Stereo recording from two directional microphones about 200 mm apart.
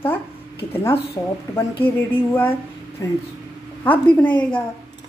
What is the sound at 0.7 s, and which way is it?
A woman's voice, 10° left (ahead or behind).